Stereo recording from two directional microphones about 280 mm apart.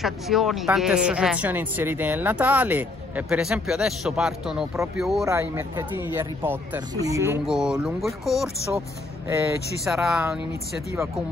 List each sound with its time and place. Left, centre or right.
0.0 s speech: centre
9.8 s speech: centre